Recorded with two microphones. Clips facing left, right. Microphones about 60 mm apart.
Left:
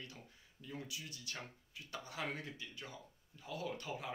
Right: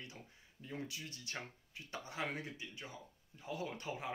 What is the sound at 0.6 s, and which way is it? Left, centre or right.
Speech, right.